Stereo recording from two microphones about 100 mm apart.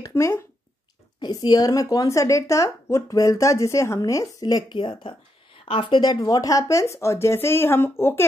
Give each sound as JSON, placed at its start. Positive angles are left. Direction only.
{"t": 0.0, "sound": "speech", "side_deg": 30}
{"t": 1.2, "sound": "a woman's voice", "side_deg": 45}